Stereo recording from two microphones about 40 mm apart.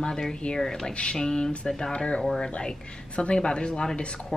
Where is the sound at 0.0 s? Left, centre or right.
Centre.